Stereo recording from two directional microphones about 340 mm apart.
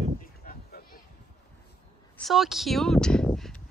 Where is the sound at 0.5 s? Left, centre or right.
Left.